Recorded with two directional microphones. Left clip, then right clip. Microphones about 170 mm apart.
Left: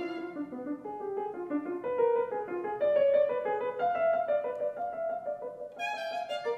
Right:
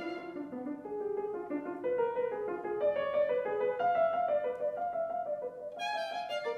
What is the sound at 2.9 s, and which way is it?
Music, 15° left (ahead or behind).